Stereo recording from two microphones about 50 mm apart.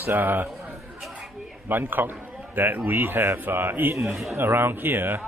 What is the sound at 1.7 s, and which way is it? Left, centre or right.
A man's voice, right.